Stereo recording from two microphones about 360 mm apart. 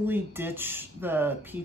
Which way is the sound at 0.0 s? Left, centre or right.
Centre.